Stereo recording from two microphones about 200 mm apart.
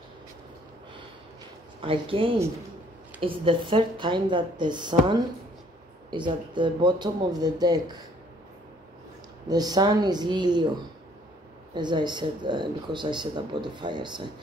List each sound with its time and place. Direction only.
1.8 s speech: 25° right (ahead or behind)
9.5 s speech: 20° right (ahead or behind)
11.7 s speech: 20° right (ahead or behind)